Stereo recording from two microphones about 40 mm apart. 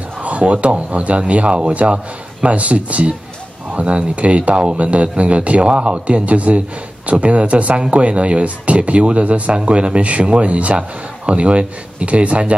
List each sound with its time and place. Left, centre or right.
0.4 s a man's voice: right